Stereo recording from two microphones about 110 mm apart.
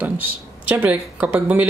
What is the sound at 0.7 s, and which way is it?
Speech, 15° right (ahead or behind).